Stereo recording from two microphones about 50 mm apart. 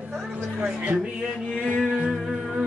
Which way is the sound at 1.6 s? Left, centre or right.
Right.